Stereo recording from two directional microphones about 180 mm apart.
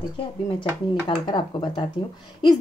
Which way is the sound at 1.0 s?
25° left (ahead or behind).